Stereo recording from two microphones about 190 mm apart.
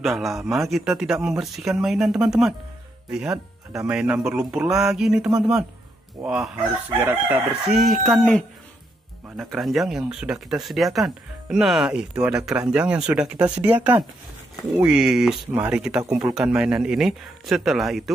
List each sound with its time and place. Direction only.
0.0 s speech: centre (ahead or behind)
16.0 s speech: 20° right (ahead or behind)
16.3 s speech: 5° right (ahead or behind)